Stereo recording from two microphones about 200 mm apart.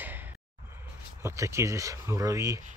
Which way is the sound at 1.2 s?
15° right (ahead or behind).